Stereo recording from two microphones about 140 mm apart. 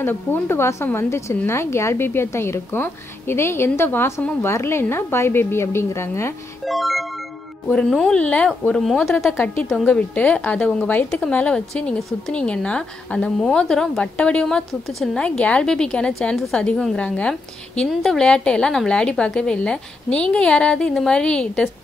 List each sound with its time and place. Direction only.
0.0 s a woman's voice: 15° left (ahead or behind)
6.6 s speech: centre (ahead or behind)
9.3 s a woman's voice: 15° left (ahead or behind)